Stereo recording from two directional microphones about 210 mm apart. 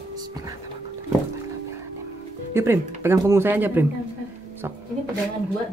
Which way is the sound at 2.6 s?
10° right (ahead or behind).